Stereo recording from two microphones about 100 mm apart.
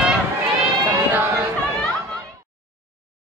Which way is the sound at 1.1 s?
20° right (ahead or behind).